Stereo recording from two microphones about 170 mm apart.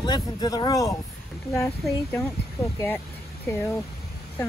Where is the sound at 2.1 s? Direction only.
15° left (ahead or behind).